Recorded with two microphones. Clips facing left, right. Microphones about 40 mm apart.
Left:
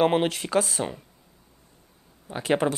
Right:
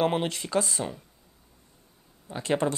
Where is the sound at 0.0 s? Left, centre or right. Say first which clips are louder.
Left 4 dB; centre.